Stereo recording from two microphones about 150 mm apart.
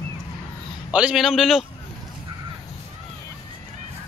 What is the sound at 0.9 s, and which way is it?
Speech, 5° right (ahead or behind).